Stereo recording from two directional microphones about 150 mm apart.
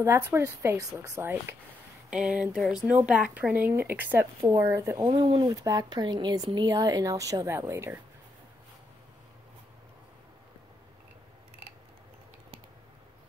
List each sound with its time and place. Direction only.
0.0 s speech: 20° right (ahead or behind)
2.0 s speech: 5° right (ahead or behind)
5.0 s speech: 30° right (ahead or behind)